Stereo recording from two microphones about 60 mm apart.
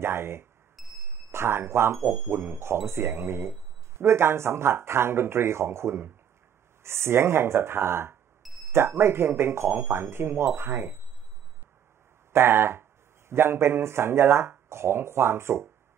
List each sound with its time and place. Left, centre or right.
0.0 s alarm: right
0.8 s a sound: centre
1.3 s speech: right
12.3 s speech: right